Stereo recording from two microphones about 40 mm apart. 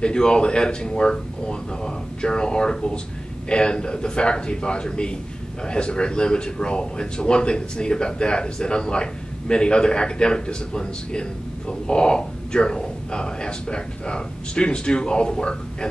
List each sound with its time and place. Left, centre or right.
0.0 s speech: left